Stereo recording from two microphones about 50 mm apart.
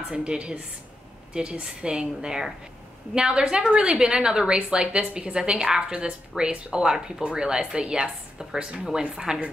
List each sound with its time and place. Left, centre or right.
0.1 s a woman's voice: right